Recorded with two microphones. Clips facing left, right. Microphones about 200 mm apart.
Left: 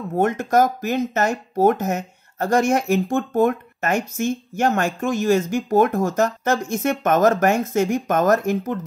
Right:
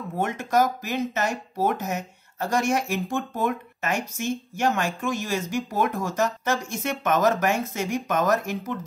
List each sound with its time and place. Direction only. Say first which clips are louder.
0.1 s speech: left 6 dB; 50° left (ahead or behind)